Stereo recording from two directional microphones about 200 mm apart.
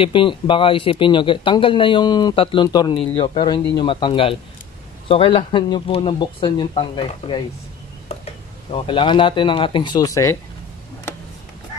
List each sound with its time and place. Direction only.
0.0 s speech: 25° left (ahead or behind)
8.7 s speech: 25° left (ahead or behind)